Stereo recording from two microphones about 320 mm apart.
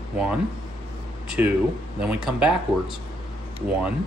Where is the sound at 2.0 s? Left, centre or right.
Centre.